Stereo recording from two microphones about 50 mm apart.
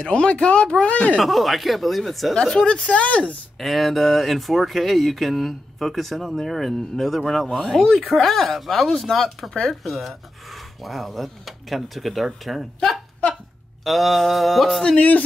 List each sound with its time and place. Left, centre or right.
0.0 s speech: left
1.2 s speech: centre
2.3 s speech: centre
3.5 s speech: centre
13.8 s speech: centre
15.0 s speech: left